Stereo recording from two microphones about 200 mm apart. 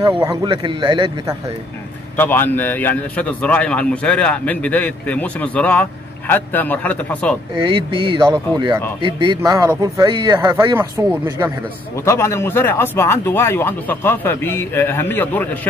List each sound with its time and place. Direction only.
0.0 s speech: 20° right (ahead or behind)
2.1 s a man's voice: 10° left (ahead or behind)
7.5 s speech: 25° right (ahead or behind)
12.0 s a man's voice: 15° left (ahead or behind)